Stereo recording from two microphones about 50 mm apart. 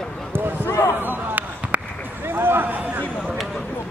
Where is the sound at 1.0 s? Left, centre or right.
Right.